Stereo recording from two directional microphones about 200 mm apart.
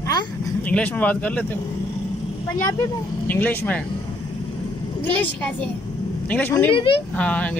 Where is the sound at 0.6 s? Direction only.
10° left (ahead or behind).